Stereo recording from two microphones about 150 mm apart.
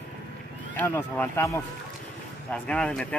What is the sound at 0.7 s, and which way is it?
Speech, 15° left (ahead or behind).